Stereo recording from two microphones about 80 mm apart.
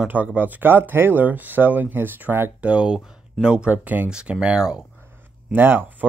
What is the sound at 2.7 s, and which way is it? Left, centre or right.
Speech, centre.